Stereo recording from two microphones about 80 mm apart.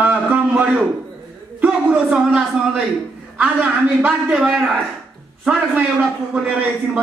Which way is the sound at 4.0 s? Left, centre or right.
Centre.